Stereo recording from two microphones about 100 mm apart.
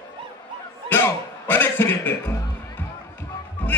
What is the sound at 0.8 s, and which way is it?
Speech, 20° left (ahead or behind).